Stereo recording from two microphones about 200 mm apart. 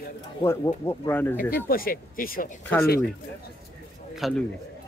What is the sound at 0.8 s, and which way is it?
Speech, 10° left (ahead or behind).